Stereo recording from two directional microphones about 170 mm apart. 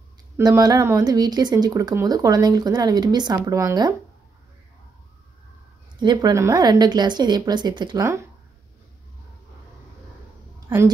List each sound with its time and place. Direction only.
0.4 s speech: 20° right (ahead or behind)
5.9 s speech: 25° right (ahead or behind)